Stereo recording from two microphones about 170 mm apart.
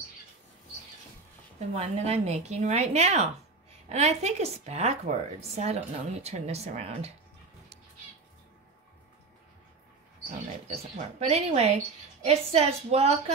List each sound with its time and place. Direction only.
1.8 s a woman's voice: 35° right (ahead or behind)
10.7 s a woman's voice: 40° right (ahead or behind)